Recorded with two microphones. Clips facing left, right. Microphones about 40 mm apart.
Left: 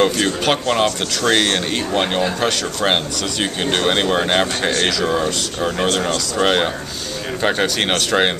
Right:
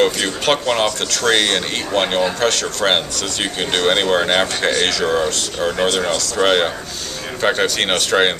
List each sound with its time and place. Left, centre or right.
0.0 s speech: centre
4.6 s a man's voice: centre
4.8 s speech: centre